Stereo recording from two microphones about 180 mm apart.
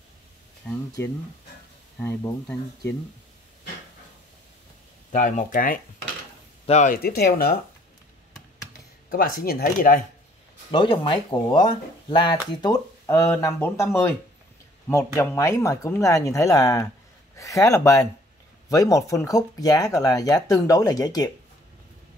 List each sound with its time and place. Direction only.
0.7 s speech: 15° left (ahead or behind)
5.1 s speech: 45° left (ahead or behind)
6.6 s speech: 40° left (ahead or behind)
7.0 s speech: 60° left (ahead or behind)
9.1 s speech: 55° left (ahead or behind)
10.7 s speech: 25° left (ahead or behind)
15.1 s speech: 15° left (ahead or behind)